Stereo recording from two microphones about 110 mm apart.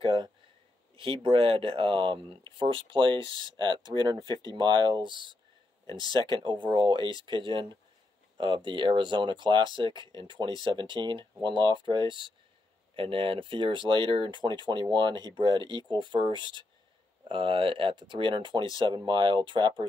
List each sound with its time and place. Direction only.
0.0 s a sound: 45° right (ahead or behind)
0.9 s speech: 55° right (ahead or behind)
5.9 s speech: 40° left (ahead or behind)
6.1 s speech: 50° right (ahead or behind)